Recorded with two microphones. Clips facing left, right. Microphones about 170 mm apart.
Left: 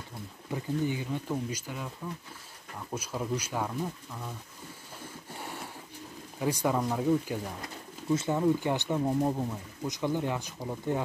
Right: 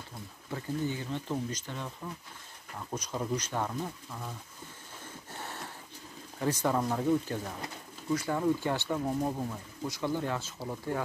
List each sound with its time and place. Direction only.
0.5 s speech: 15° left (ahead or behind)
2.9 s speech: 10° left (ahead or behind)
5.3 s a sound: 10° left (ahead or behind)
6.4 s speech: 10° left (ahead or behind)
8.1 s speech: 25° left (ahead or behind)